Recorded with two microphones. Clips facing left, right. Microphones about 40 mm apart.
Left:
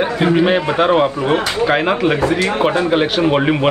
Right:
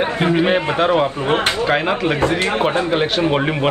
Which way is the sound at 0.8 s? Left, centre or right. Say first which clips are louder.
Left 3 dB; left.